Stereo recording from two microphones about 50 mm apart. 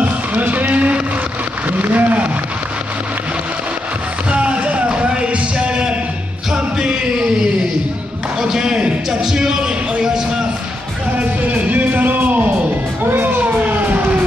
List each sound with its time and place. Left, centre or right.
0.0 s music: right
1.7 s speech: right
4.3 s music: right
8.4 s a sound: centre
11.1 s music: right
13.0 s a sound: right